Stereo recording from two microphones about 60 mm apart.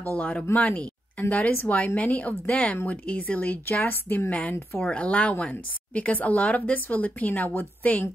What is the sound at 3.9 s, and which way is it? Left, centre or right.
Speech, left.